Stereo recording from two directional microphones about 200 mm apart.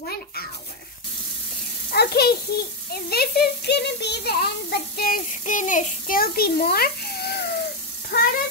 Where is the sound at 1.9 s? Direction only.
50° left (ahead or behind).